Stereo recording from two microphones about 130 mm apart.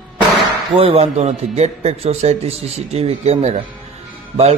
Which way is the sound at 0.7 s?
50° right (ahead or behind).